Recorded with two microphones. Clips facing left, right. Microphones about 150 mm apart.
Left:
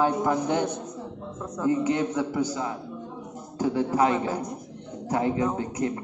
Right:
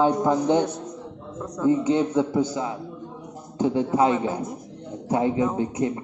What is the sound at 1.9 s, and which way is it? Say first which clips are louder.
A man's voice: right 4 dB; 20° right (ahead or behind).